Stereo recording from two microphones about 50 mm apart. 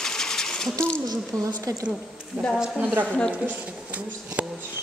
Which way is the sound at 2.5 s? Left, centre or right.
Centre.